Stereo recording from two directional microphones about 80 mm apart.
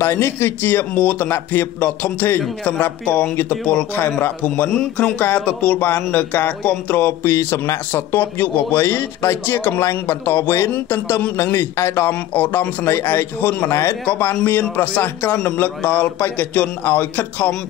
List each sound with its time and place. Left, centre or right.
0.0 s speech: left
8.1 s a man's voice: left
13.7 s a man's voice: left